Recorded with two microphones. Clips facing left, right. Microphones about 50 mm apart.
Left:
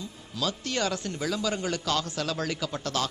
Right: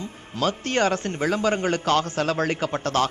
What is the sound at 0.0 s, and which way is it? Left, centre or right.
A man's voice, right.